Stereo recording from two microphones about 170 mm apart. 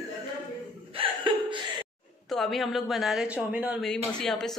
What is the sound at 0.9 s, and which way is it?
Hiccup, 30° right (ahead or behind).